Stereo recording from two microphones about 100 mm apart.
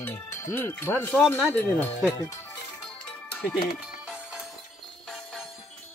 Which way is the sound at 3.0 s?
20° left (ahead or behind).